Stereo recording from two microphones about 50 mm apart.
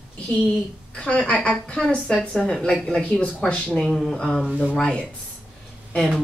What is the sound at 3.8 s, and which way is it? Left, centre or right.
Speech, centre.